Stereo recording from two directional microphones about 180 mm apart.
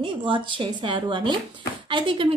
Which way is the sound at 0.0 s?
30° right (ahead or behind).